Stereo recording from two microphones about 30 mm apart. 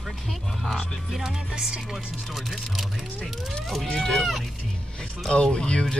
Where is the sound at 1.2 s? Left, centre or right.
Right.